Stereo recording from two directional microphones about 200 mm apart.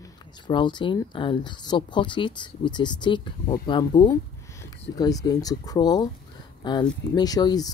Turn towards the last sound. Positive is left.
turn(degrees=20)  # may be behind; listen again after turning